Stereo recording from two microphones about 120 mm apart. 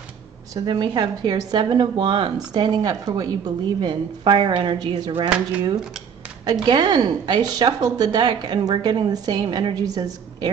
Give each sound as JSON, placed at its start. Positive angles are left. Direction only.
{"t": 0.6, "sound": "a woman's voice", "side_deg": -35}